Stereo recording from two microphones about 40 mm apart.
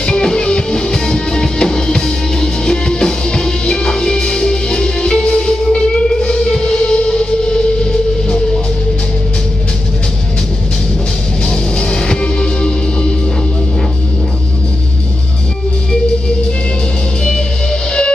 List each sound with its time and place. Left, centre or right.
0.0 s music: centre
11.4 s music: left